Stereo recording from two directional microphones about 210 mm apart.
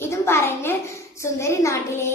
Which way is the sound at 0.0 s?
10° left (ahead or behind).